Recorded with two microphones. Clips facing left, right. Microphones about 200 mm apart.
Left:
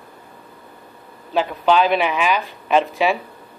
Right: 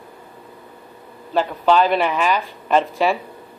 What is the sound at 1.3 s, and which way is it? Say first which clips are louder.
Speech: even; 10° left (ahead or behind).